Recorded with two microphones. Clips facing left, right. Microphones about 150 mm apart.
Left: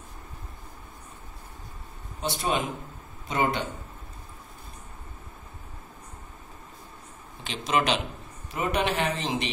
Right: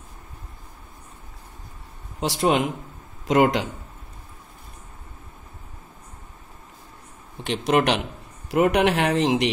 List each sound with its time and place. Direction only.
2.1 s speech: 85° right
3.3 s speech: 90° right
7.4 s speech: 65° right (ahead or behind)